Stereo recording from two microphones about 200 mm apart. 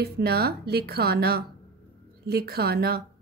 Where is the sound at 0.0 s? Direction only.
50° right (ahead or behind).